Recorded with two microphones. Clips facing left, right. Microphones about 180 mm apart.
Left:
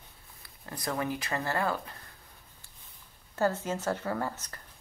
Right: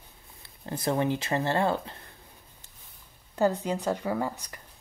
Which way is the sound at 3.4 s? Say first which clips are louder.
Right 3 dB; 15° right (ahead or behind).